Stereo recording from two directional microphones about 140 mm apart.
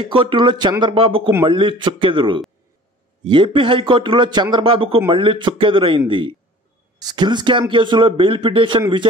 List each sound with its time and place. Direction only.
0.1 s speech: 35° right (ahead or behind)